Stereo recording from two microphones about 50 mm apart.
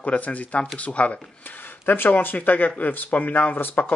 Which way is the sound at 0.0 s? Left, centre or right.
Left.